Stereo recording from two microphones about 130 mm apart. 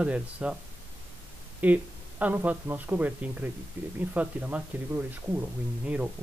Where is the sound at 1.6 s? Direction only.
10° right (ahead or behind).